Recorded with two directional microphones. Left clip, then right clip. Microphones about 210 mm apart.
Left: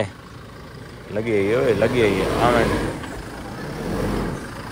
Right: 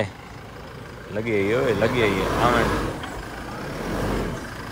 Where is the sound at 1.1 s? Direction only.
5° right (ahead or behind).